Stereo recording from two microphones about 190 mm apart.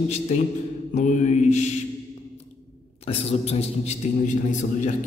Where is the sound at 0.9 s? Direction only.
40° left (ahead or behind).